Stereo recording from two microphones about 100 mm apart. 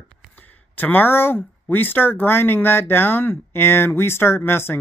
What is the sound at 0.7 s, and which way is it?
Speech, 20° left (ahead or behind).